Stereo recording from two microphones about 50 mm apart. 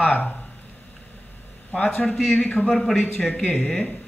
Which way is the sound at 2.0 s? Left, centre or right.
Centre.